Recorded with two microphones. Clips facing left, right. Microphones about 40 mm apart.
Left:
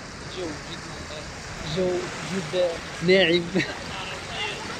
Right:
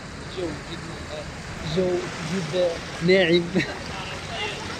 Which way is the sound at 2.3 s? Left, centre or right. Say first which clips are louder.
Right 1 dB; centre.